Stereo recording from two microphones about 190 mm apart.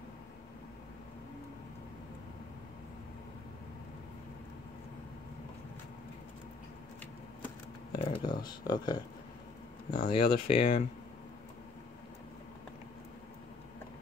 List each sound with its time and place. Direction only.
8.0 s speech: 30° left (ahead or behind)